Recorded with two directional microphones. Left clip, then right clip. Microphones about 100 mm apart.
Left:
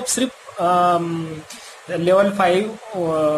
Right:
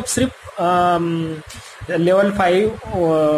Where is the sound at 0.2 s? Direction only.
20° right (ahead or behind).